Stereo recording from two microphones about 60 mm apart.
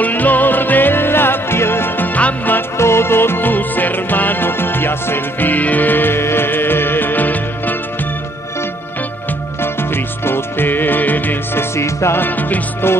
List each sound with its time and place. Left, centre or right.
0.0 s music: left
2.1 s music: left
2.8 s music: left
9.6 s music: left
11.7 s music: left
12.2 s music: left